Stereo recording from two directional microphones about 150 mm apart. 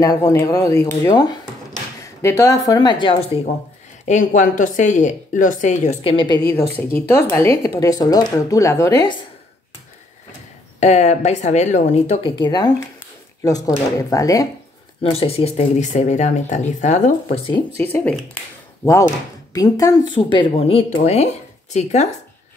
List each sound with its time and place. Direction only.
0.0 s a woman's voice: 20° left (ahead or behind); by 3.3 s 35° left (ahead or behind)
4.0 s speech: 55° left (ahead or behind)
6.0 s speech: 30° left (ahead or behind)
7.2 s a woman's voice: 20° left (ahead or behind)
10.8 s speech: 50° left (ahead or behind)
12.3 s a woman's voice: 30° left (ahead or behind)
15.0 s speech: 40° left (ahead or behind)
17.7 s speech: 10° left (ahead or behind); by 22.1 s 50° left (ahead or behind)